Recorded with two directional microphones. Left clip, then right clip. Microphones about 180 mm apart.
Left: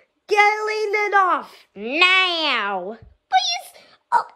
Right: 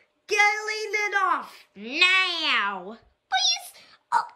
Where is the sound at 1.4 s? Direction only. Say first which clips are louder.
Left 6 dB; centre (ahead or behind).